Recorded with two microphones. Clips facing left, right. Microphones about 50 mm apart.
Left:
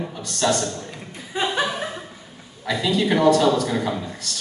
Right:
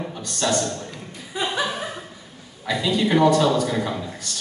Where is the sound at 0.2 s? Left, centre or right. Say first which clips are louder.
Left 2 dB; centre.